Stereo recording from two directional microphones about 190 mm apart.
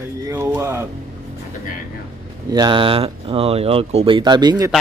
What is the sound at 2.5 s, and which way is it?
Speech, 25° right (ahead or behind).